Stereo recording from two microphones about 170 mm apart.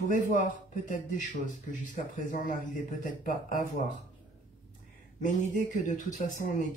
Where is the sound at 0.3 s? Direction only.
50° left (ahead or behind).